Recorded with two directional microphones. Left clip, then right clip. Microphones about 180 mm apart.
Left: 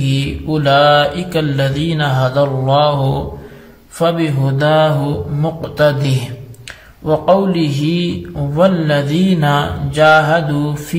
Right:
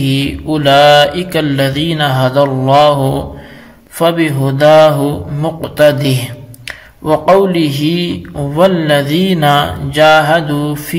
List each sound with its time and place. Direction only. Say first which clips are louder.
0.0 s mantra: right 5 dB; 20° right (ahead or behind)